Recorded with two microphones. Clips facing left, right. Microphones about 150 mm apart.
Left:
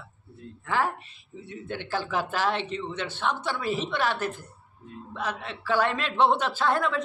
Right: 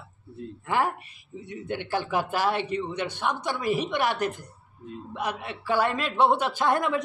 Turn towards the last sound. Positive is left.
turn(degrees=-15)  # may be behind; listen again after turning